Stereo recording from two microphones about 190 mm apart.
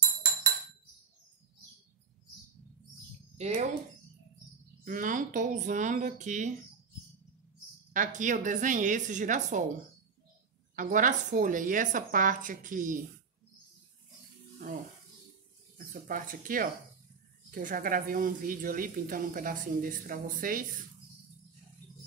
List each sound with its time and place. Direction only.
3.3 s speech: 35° right (ahead or behind)
4.8 s speech: 45° right (ahead or behind)
7.9 s speech: 40° right (ahead or behind)
10.8 s speech: 45° right (ahead or behind)
15.9 s speech: 45° right (ahead or behind)